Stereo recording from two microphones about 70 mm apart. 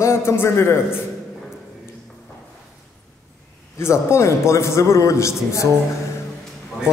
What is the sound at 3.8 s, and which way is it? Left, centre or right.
A man's voice, left.